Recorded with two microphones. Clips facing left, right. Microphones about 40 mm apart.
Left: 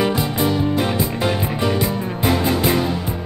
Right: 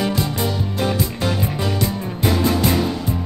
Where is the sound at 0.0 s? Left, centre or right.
Centre.